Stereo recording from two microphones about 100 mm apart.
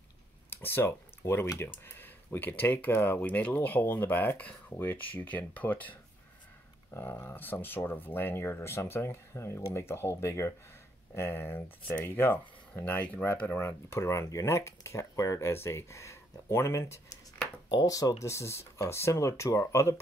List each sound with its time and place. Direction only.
0.5 s speech: 20° left (ahead or behind)